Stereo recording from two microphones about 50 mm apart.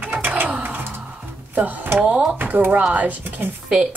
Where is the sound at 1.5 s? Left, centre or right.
Right.